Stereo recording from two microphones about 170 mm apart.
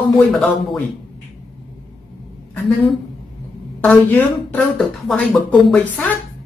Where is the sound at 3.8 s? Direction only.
10° left (ahead or behind).